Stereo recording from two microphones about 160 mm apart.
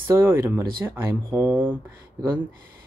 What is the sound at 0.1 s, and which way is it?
Speech, 15° right (ahead or behind).